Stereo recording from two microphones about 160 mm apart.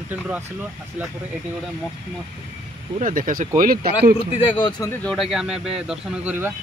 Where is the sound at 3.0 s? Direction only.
55° right (ahead or behind).